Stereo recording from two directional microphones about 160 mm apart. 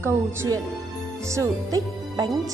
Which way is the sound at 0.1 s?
15° right (ahead or behind).